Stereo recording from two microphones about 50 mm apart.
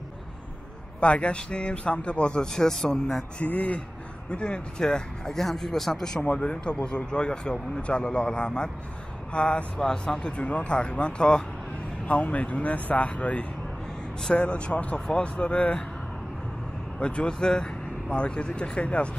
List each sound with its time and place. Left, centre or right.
1.0 s speech: left
3.3 s speech: left; by 6.2 s centre
6.2 s speech: left
12.1 s speech: left
17.0 s speech: left